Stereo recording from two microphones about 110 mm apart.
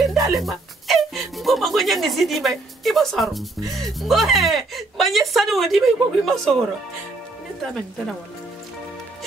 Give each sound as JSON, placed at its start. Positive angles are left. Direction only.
{"t": 0.0, "sound": "speech", "side_deg": 0}